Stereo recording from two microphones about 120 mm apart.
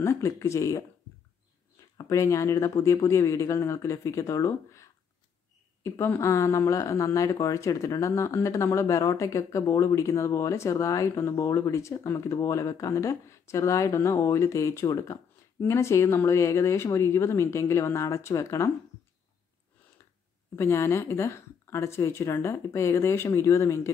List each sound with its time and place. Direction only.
0.0 s speech: 25° left (ahead or behind)
2.0 s speech: 25° left (ahead or behind)
5.9 s speech: 20° left (ahead or behind)
20.5 s speech: 20° left (ahead or behind)